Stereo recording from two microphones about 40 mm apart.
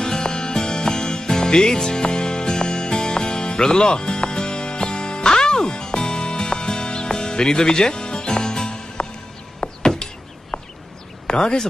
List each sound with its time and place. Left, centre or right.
0.0 s music: centre
9.6 s a sound: left
11.2 s speech: centre